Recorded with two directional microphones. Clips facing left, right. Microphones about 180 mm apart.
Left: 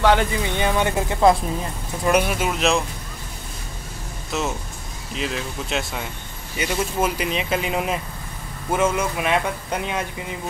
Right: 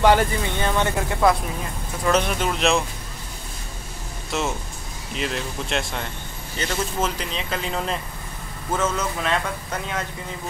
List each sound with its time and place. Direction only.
0.0 s speech: 10° right (ahead or behind)
0.6 s speech: 15° left (ahead or behind)
4.3 s speech: centre (ahead or behind); by 10.0 s 15° left (ahead or behind)